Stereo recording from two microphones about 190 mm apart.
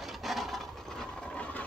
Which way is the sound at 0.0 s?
Centre (ahead or behind).